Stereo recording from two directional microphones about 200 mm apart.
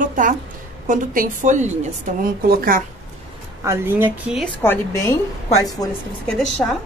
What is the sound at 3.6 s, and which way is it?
Speech, 10° right (ahead or behind).